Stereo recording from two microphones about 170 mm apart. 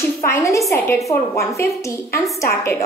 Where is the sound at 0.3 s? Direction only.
20° left (ahead or behind).